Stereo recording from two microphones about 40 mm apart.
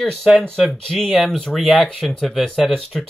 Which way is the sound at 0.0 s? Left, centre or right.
Centre.